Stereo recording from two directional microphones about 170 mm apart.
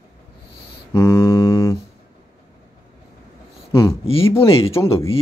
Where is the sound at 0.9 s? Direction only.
15° left (ahead or behind).